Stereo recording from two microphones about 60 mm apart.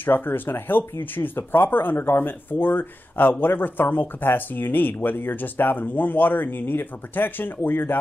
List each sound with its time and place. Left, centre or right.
0.0 s speech: left